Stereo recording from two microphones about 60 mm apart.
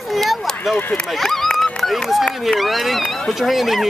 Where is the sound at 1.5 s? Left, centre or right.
Centre.